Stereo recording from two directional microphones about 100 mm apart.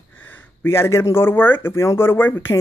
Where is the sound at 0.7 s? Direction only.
25° left (ahead or behind).